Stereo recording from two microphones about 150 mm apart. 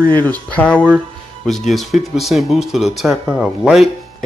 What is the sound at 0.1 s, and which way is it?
Speech, 10° left (ahead or behind).